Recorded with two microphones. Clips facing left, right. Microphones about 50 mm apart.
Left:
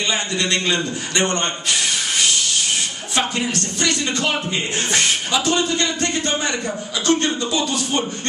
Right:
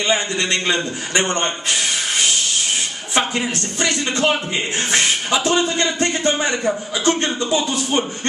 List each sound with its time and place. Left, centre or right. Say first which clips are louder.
0.1 s speech: right 3 dB; right